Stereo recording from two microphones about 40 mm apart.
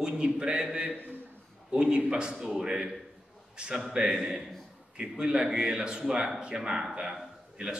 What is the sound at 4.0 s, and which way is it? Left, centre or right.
A man's voice, right.